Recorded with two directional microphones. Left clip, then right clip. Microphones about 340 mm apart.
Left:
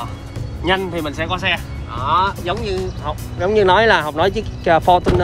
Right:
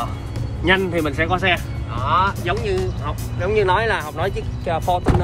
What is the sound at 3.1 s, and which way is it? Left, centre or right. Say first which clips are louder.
Speech: left 6 dB; centre.